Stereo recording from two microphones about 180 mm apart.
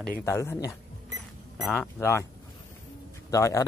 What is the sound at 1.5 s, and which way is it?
Speech, centre (ahead or behind).